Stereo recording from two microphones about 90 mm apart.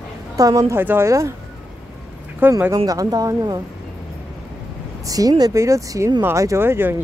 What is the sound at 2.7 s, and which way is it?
Speech, 40° right (ahead or behind).